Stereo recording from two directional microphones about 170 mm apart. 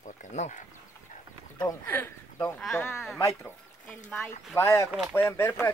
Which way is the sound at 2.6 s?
Centre (ahead or behind).